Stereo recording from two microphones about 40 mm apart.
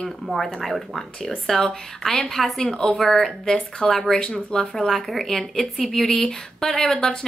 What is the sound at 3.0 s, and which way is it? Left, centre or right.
A woman's voice, centre.